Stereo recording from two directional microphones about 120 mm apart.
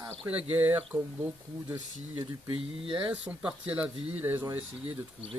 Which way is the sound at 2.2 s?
40° right (ahead or behind).